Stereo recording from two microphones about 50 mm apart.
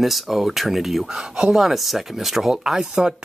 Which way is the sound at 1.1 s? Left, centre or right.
Centre.